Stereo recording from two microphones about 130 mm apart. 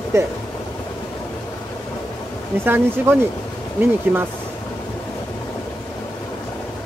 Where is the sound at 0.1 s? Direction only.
25° right (ahead or behind).